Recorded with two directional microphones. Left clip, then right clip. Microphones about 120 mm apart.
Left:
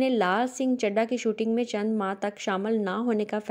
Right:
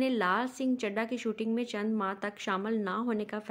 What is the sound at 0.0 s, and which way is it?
A woman's voice, 35° left (ahead or behind).